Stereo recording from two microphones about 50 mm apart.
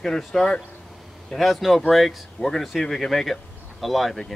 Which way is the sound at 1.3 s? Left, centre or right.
Centre.